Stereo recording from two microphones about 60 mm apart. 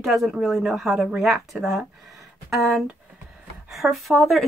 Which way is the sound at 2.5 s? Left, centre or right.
Centre.